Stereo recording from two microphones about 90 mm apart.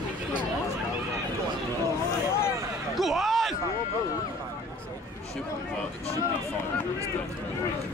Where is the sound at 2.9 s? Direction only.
Centre (ahead or behind).